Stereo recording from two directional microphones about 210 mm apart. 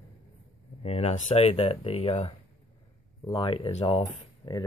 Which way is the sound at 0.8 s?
30° left (ahead or behind).